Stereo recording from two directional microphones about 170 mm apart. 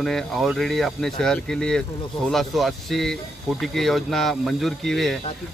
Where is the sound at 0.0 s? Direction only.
Centre (ahead or behind).